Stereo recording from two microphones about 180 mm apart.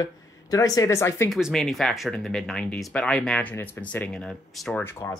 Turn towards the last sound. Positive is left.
turn(degrees=15)  # may be behind; listen again after turning